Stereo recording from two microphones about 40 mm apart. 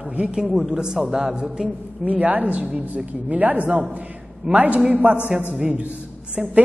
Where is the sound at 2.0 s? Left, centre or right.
Right.